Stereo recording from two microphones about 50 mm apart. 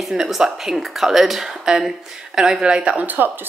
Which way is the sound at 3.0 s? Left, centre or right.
Right.